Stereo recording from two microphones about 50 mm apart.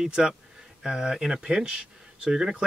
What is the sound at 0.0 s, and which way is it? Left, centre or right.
A man's voice, centre.